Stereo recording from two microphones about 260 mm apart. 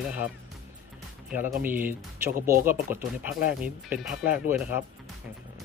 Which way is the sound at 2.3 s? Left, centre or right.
Right.